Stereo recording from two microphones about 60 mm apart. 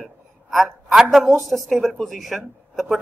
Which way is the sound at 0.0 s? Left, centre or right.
Centre.